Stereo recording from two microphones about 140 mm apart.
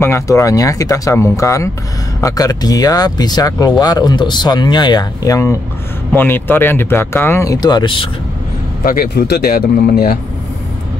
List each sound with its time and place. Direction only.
0.0 s speech: 20° left (ahead or behind)
8.8 s speech: 90° left